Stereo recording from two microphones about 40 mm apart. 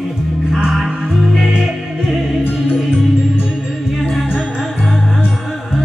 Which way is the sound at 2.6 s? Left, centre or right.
Centre.